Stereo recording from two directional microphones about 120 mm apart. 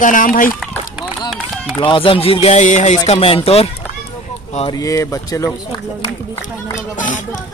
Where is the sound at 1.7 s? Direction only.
45° left (ahead or behind).